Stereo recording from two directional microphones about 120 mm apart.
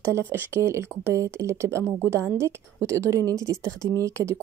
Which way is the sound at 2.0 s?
20° right (ahead or behind).